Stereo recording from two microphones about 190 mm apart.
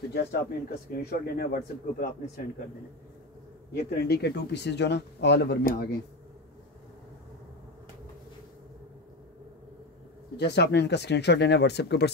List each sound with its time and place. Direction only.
0.1 s speech: 60° left (ahead or behind)
3.7 s speech: 55° left (ahead or behind)
10.3 s speech: 60° left (ahead or behind)